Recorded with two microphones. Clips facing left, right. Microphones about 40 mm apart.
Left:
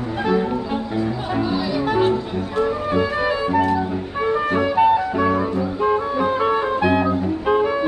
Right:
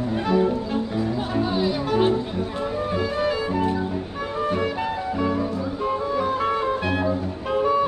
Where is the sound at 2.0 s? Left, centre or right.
Left.